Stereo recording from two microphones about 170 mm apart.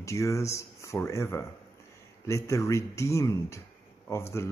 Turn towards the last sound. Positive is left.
turn(degrees=15)  # may be behind; listen again after turning